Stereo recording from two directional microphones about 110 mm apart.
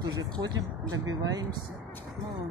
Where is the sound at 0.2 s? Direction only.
40° right (ahead or behind).